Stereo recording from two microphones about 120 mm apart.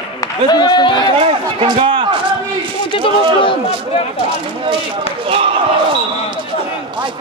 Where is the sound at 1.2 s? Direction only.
55° right (ahead or behind).